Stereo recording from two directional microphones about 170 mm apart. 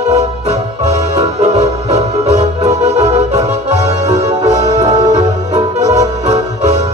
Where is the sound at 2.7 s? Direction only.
40° right (ahead or behind).